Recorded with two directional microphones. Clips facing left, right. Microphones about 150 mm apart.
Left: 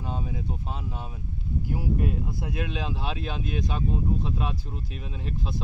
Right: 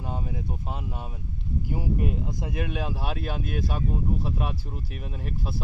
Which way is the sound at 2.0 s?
15° right (ahead or behind).